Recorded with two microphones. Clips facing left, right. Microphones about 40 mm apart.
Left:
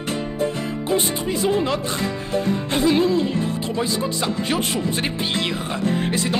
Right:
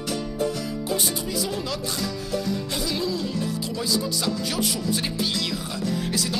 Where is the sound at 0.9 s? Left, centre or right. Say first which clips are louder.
Left 7 dB; left.